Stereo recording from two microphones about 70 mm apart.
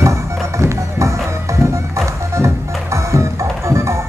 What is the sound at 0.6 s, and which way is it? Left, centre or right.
Music, right.